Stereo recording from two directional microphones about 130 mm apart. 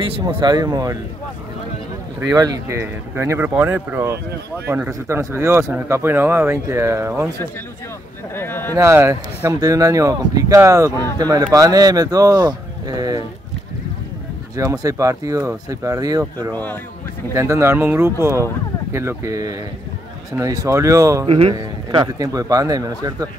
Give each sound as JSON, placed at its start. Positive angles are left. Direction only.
{"t": 0.4, "sound": "speech", "side_deg": -30}
{"t": 2.1, "sound": "speech", "side_deg": -30}
{"t": 8.4, "sound": "speech", "side_deg": 15}
{"t": 8.7, "sound": "speech", "side_deg": -20}
{"t": 10.9, "sound": "speech", "side_deg": 20}
{"t": 11.1, "sound": "speech", "side_deg": -30}
{"t": 14.6, "sound": "speech", "side_deg": -25}
{"t": 21.3, "sound": "a man's voice", "side_deg": -45}
{"t": 21.5, "sound": "speech", "side_deg": -30}